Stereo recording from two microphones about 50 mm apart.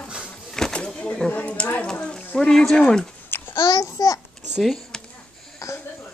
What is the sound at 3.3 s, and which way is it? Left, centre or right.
Babbling, left.